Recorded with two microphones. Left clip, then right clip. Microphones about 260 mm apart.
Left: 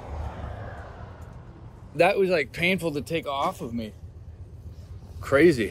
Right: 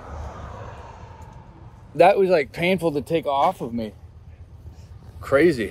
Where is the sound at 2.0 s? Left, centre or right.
Centre.